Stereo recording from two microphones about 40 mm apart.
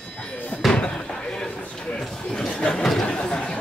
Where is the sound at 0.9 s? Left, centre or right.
Centre.